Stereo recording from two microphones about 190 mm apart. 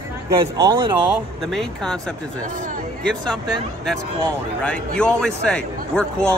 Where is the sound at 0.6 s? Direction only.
20° right (ahead or behind).